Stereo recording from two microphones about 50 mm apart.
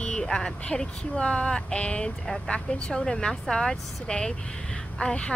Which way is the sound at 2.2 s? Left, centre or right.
Centre.